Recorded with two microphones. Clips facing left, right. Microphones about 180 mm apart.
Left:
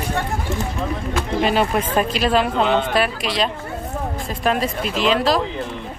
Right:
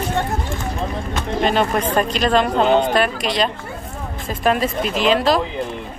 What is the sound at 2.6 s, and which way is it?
Speech, 40° right (ahead or behind).